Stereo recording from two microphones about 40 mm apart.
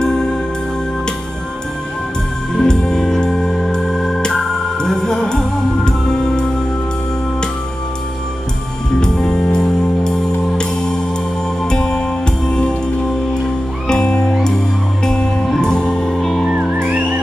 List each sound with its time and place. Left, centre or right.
0.0 s music: left
2.5 s music: centre
9.0 s music: left
13.8 s music: left
16.7 s music: right